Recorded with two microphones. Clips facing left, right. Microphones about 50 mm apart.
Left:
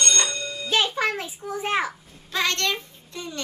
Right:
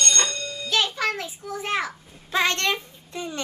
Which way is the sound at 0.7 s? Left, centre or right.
Left.